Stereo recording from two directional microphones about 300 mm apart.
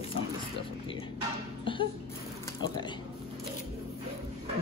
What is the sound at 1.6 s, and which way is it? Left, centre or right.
Music, centre.